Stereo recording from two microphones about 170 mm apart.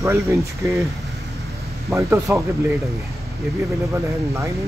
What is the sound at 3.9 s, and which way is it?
Speech, 15° right (ahead or behind).